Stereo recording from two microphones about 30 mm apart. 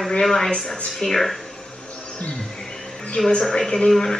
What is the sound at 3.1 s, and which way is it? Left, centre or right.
Speech, centre.